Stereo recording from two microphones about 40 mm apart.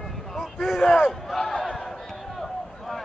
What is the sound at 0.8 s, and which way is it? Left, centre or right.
Speech, centre.